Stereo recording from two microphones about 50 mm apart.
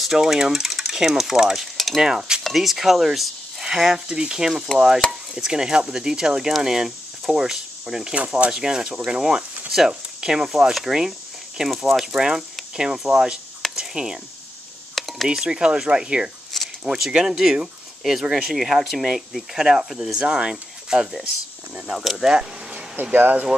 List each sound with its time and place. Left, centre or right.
0.0 s stir: centre
2.0 s speech: centre
2.4 s speech: centre
15.0 s a sound: centre
15.3 s speech: centre
18.5 s speech: centre
22.2 s a sound: centre
23.1 s speech: right